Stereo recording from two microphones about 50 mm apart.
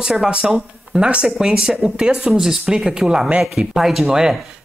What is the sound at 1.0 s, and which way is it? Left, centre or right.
Speech, right.